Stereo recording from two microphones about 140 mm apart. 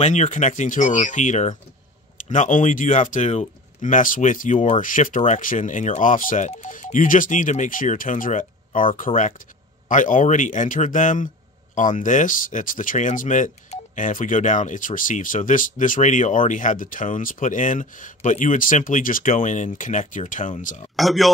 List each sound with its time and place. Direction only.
0.0 s speech: 55° left (ahead or behind)
20.9 s speech: centre (ahead or behind)